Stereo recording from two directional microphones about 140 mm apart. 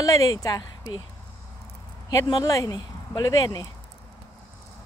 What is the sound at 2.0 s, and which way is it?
Speech, 30° left (ahead or behind).